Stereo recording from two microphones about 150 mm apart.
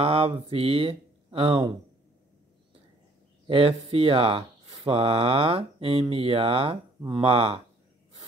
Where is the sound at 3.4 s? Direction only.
40° right (ahead or behind).